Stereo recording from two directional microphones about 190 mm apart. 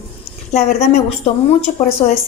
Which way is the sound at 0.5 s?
35° left (ahead or behind).